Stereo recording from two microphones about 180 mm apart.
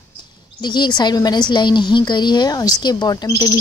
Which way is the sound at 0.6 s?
25° left (ahead or behind).